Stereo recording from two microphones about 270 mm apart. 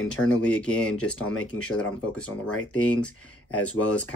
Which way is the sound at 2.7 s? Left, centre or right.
Centre.